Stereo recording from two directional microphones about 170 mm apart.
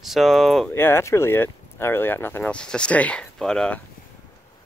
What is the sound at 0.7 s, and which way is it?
Speech, 15° left (ahead or behind).